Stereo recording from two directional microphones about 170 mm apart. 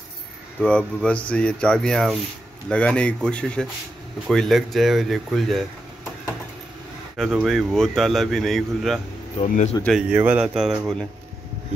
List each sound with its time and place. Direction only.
0.6 s speech: 5° left (ahead or behind)
7.4 s speech: centre (ahead or behind)
9.4 s speech: 40° left (ahead or behind)
9.8 s speech: 5° right (ahead or behind)